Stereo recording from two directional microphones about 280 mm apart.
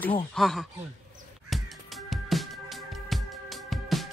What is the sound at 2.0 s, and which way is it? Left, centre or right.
Music, centre.